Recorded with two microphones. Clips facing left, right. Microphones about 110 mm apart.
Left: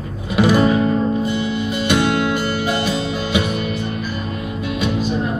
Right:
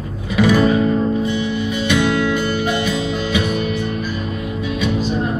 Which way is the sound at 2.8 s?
45° left (ahead or behind).